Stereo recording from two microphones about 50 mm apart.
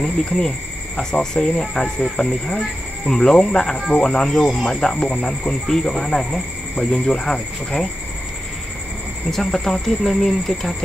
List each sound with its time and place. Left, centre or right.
0.0 s speech: centre
9.3 s speech: centre